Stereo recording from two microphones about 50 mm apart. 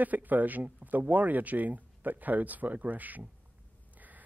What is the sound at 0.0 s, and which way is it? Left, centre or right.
Speech, right.